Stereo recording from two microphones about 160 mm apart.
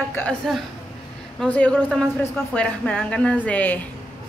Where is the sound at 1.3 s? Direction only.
10° left (ahead or behind).